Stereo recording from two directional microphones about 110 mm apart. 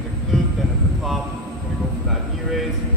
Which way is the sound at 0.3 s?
Centre (ahead or behind).